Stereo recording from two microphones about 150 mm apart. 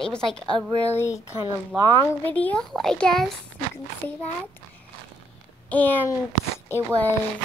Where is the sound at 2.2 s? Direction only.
10° left (ahead or behind).